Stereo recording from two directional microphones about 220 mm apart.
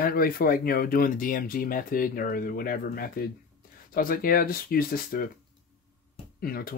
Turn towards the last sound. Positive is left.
turn(degrees=40)  # may be behind; listen again after turning